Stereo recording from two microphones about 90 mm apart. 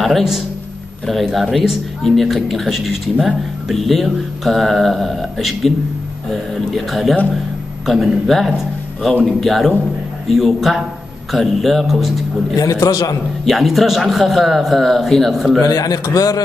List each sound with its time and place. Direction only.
0.0 s speech: centre (ahead or behind)
6.7 s speech: centre (ahead or behind)
12.5 s a man's voice: 40° left (ahead or behind)
13.5 s speech: centre (ahead or behind)
15.6 s a man's voice: 40° left (ahead or behind)